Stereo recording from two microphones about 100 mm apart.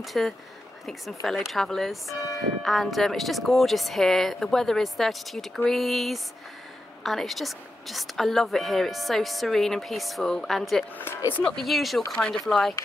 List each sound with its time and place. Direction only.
0.0 s a woman's voice: centre (ahead or behind)
11.0 s speech: 25° left (ahead or behind)
11.3 s a woman's voice: 5° left (ahead or behind)